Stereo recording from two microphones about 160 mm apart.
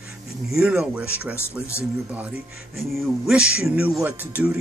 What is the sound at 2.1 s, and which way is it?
Speech, 10° right (ahead or behind).